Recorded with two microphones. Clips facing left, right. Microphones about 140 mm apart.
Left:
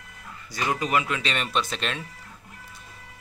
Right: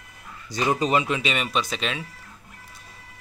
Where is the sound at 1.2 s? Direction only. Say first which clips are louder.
Right 2 dB; 5° right (ahead or behind).